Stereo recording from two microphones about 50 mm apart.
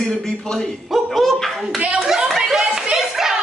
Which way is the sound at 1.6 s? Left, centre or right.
Right.